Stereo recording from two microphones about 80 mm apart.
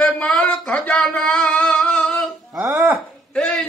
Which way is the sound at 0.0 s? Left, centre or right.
Centre.